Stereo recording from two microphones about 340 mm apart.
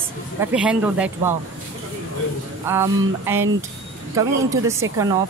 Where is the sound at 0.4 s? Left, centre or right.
Centre.